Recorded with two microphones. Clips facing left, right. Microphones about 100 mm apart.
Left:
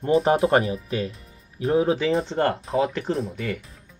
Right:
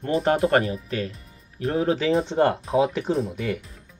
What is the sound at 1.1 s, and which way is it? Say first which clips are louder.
Speech: even; 5° left (ahead or behind).